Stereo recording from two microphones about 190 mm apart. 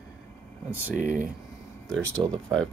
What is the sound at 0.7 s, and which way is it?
Speech, 10° right (ahead or behind).